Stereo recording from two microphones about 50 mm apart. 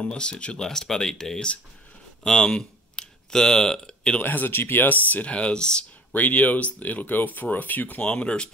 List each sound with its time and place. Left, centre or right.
0.0 s speech: centre
4.2 s speech: left
4.5 s speech: left
5.1 s speech: left
6.1 s speech: left
8.1 s speech: left